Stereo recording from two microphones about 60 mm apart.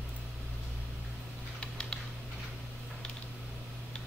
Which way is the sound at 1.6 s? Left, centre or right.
Centre.